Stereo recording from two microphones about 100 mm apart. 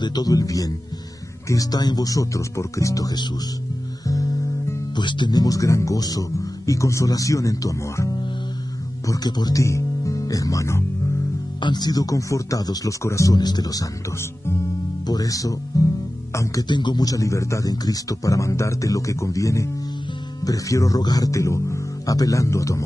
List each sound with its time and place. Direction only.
0.0 s a man's voice: 40° left (ahead or behind)
4.1 s guitar: 35° left (ahead or behind)
5.0 s a man's voice: 50° left (ahead or behind); by 10.8 s 30° left (ahead or behind)
11.6 s a man's voice: 45° left (ahead or behind)
15.0 s speech: 35° left (ahead or behind)
16.6 s a man's voice: 50° left (ahead or behind); by 22.8 s 30° left (ahead or behind)